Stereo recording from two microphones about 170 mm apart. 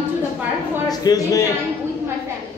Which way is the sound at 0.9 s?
20° left (ahead or behind).